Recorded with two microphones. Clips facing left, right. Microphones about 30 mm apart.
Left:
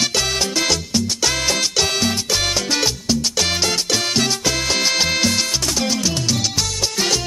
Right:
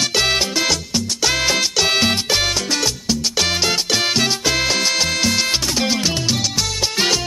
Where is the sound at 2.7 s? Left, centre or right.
Centre.